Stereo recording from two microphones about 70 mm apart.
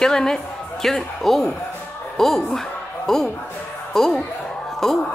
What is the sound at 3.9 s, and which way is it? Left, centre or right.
Music, centre.